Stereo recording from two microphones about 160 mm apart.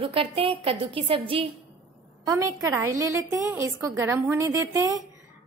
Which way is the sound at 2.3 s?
20° right (ahead or behind).